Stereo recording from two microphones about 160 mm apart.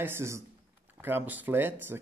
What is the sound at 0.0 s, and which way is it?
Speech, 15° right (ahead or behind).